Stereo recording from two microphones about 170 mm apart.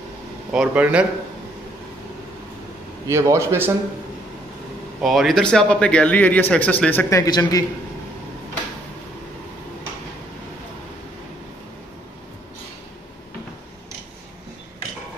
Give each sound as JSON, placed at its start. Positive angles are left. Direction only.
{"t": 0.5, "sound": "a man's voice", "side_deg": -5}
{"t": 3.1, "sound": "a man's voice", "side_deg": -15}
{"t": 5.0, "sound": "speech", "side_deg": 0}